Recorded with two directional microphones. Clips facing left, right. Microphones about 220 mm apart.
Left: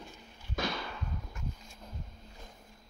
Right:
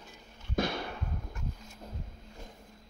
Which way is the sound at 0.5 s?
55° right (ahead or behind).